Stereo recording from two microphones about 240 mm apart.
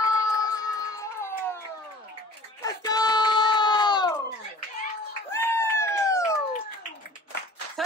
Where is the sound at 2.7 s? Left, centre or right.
Centre.